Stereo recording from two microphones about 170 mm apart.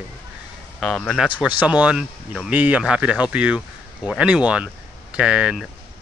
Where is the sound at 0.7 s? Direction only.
5° left (ahead or behind).